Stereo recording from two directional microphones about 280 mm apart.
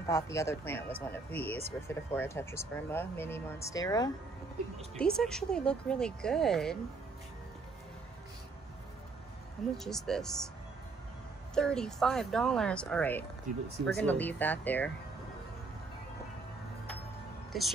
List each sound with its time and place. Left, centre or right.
0.0 s speech: centre
4.9 s speech: centre
9.8 s speech: centre
11.5 s speech: centre
13.5 s speech: right
13.9 s speech: centre
17.5 s speech: centre